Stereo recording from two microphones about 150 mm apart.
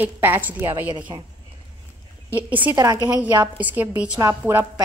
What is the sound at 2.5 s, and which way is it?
Speech, 10° right (ahead or behind).